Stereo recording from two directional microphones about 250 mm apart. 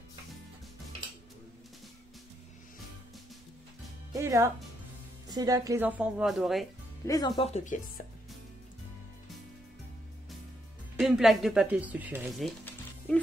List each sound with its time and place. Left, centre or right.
4.1 s speech: centre
7.1 s speech: centre
11.0 s speech: centre